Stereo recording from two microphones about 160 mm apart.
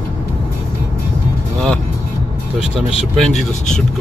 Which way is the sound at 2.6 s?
Centre (ahead or behind).